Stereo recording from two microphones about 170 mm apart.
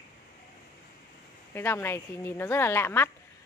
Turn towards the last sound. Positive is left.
turn(degrees=15)  # may be behind; listen again after turning